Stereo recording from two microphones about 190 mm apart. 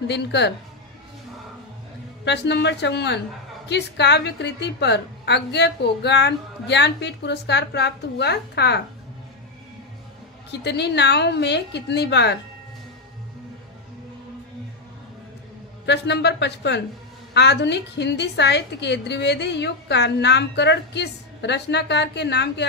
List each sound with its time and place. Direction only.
0.1 s a woman's voice: 65° left (ahead or behind)
2.2 s a woman's voice: 65° left (ahead or behind)
10.5 s a woman's voice: 65° left (ahead or behind)
15.8 s a woman's voice: 65° left (ahead or behind)